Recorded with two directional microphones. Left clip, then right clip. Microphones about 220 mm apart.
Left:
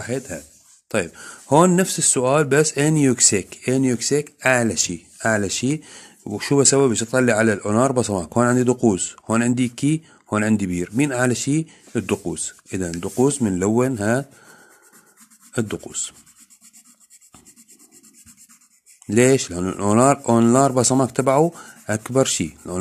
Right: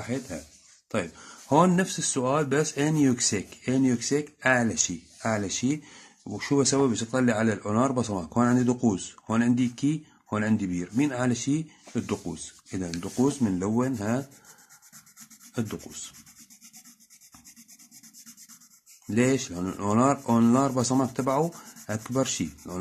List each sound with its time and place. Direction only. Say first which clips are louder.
0.0 s speech: left 6 dB; 40° left (ahead or behind)
15.5 s speech: left 9 dB; 40° left (ahead or behind)
19.0 s speech: left 9 dB; 40° left (ahead or behind)